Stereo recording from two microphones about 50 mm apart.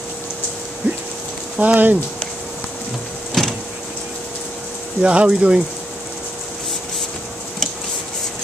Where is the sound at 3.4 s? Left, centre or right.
Centre.